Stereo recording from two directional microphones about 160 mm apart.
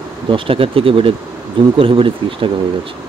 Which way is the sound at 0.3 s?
35° right (ahead or behind).